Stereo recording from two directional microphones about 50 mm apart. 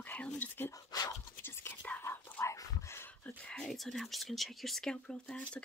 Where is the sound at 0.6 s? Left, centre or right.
Left.